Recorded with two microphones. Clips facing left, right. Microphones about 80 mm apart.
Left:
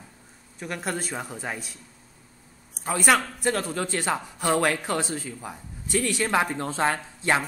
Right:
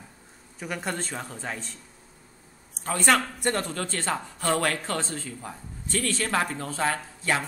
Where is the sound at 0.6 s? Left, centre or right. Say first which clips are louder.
Left 1 dB; centre.